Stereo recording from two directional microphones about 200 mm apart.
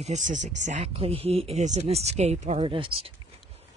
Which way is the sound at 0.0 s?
35° right (ahead or behind).